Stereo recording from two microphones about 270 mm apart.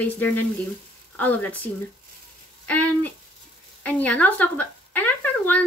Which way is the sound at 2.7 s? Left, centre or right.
Centre.